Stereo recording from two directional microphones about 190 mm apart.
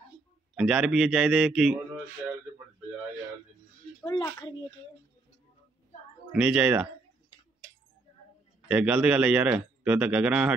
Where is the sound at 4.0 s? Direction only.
20° left (ahead or behind).